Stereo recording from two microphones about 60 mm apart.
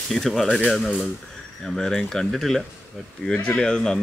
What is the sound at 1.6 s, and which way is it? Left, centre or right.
Speech, centre.